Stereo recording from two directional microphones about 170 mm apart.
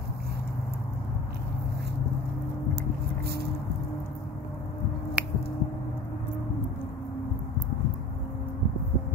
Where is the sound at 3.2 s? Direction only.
70° right (ahead or behind).